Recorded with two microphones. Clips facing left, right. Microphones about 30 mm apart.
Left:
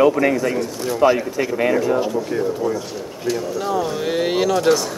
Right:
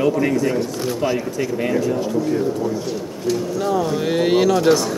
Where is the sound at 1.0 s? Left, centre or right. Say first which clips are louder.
Left 7 dB; centre.